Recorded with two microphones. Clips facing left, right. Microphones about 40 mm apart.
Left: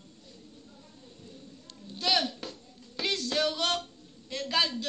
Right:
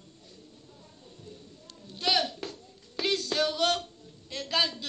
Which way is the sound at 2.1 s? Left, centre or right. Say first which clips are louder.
Right 1 dB; centre.